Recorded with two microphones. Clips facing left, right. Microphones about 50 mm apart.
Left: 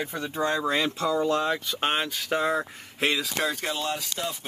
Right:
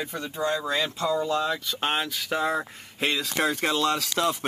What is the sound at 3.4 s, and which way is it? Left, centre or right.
Speech, right.